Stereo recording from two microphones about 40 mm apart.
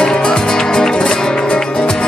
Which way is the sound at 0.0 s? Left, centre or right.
Left.